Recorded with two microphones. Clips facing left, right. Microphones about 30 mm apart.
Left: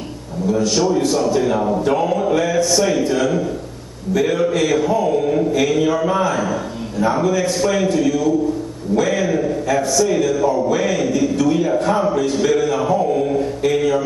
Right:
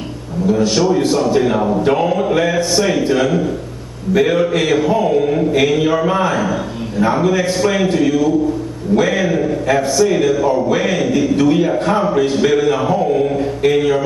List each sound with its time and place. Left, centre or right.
0.5 s speech: right